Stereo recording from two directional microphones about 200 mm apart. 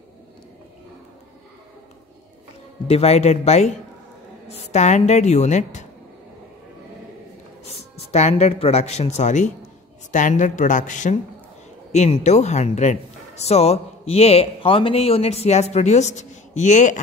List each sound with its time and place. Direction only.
2.9 s a man's voice: 30° left (ahead or behind)
7.6 s a man's voice: 35° left (ahead or behind)